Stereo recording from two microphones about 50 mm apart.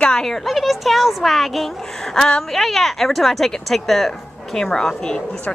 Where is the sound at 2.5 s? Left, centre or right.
Centre.